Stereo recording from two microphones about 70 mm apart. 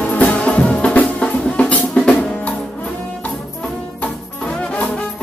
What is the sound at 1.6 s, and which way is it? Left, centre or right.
Drum, centre.